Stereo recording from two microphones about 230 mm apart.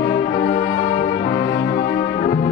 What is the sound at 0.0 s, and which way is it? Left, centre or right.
Brass instrument, left.